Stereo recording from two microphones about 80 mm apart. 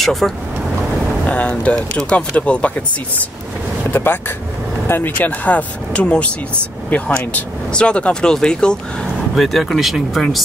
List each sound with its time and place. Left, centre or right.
0.0 s speech: centre
1.2 s speech: centre
3.9 s speech: left; by 10.4 s centre